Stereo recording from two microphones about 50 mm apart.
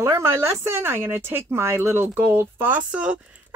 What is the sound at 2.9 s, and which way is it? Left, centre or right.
Speech, right.